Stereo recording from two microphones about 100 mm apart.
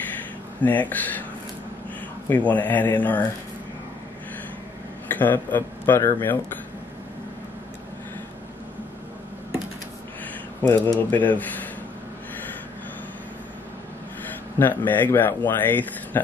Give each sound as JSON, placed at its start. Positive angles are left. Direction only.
{"t": 0.6, "sound": "speech", "side_deg": 15}
{"t": 2.2, "sound": "speech", "side_deg": 15}
{"t": 5.1, "sound": "a man's voice", "side_deg": 20}
{"t": 10.7, "sound": "speech", "side_deg": 20}
{"t": 14.6, "sound": "speech", "side_deg": 20}